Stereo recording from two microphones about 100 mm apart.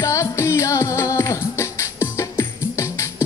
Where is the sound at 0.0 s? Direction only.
30° left (ahead or behind).